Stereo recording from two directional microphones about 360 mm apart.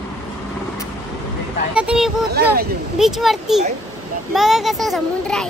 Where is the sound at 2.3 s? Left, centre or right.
Right.